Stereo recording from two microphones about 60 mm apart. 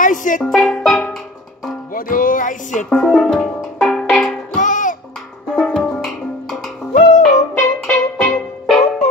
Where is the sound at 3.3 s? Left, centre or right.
Centre.